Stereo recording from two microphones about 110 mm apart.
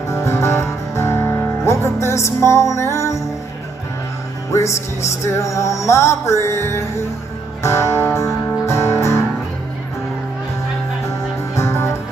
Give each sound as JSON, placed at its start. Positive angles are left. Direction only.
{"t": 0.1, "sound": "music", "side_deg": 25}
{"t": 4.5, "sound": "music", "side_deg": 25}
{"t": 11.1, "sound": "music", "side_deg": 25}